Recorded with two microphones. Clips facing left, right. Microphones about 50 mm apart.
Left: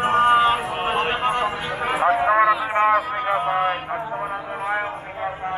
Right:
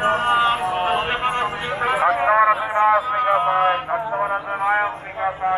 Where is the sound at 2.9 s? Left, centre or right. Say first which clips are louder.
Right 2 dB; right.